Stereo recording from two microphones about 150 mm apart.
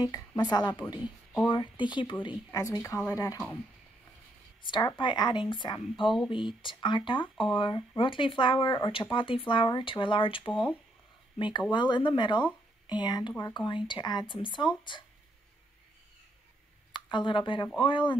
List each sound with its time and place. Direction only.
0.0 s a woman's voice: 25° left (ahead or behind)
4.6 s a woman's voice: 30° left (ahead or behind)
16.9 s speech: 30° left (ahead or behind)